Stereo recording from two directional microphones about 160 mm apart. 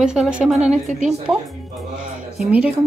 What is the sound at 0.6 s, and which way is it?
Speech, 45° right (ahead or behind).